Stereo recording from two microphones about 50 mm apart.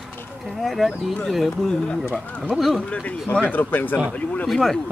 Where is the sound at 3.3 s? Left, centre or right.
Left.